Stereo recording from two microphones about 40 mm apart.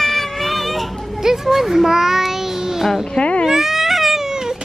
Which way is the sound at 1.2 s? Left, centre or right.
Centre.